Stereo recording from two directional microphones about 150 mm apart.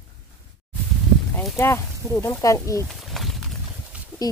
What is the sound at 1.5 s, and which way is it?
A woman's voice, 20° left (ahead or behind).